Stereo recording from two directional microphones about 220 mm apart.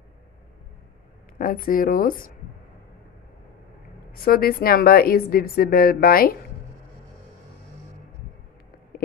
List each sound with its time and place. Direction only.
1.4 s speech: 40° left (ahead or behind)
4.1 s speech: 45° left (ahead or behind)